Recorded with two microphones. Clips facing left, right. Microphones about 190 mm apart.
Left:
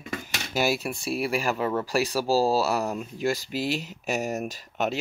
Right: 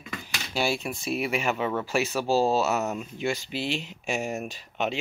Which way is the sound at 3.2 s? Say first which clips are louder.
Left 3 dB; 40° left (ahead or behind).